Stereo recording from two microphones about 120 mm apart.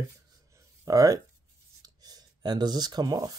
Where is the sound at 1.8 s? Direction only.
35° right (ahead or behind).